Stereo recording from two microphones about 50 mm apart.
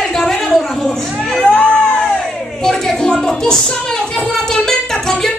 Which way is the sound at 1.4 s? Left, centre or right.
Left.